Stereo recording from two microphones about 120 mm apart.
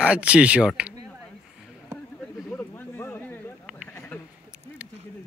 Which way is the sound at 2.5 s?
15° left (ahead or behind).